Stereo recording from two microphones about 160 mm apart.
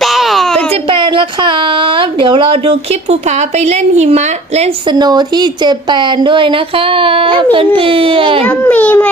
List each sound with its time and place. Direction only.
0.0 s a sound: centre (ahead or behind)
0.8 s speech: 30° right (ahead or behind)
4.9 s speech: 25° right (ahead or behind)
8.5 s a child's voice: 10° left (ahead or behind)